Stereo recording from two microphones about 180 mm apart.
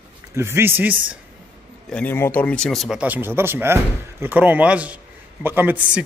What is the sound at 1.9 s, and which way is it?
Speech, 10° left (ahead or behind).